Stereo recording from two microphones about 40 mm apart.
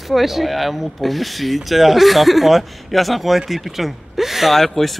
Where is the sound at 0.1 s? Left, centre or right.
Centre.